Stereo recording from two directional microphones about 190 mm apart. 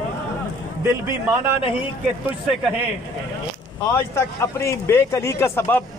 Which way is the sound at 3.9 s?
15° left (ahead or behind).